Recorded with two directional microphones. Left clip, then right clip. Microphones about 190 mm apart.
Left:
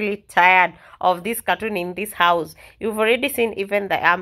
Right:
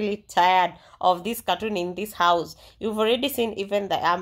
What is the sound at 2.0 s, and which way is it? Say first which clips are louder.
Speech: left 3 dB; 45° left (ahead or behind).